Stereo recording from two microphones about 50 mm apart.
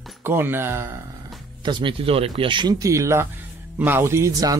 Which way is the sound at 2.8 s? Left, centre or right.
Right.